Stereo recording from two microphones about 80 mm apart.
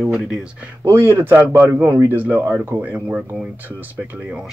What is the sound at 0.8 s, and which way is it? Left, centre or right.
A man's voice, right.